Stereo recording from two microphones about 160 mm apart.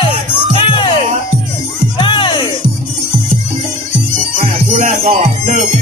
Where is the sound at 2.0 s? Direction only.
30° left (ahead or behind).